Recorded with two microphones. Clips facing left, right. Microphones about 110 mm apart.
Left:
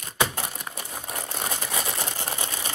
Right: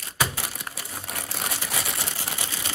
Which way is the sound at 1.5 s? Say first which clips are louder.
Left 2 dB; 25° left (ahead or behind).